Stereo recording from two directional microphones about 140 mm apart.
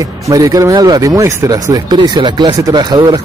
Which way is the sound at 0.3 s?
25° right (ahead or behind).